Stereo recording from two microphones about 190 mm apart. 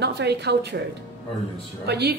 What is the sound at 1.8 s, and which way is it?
Speech, 60° right (ahead or behind).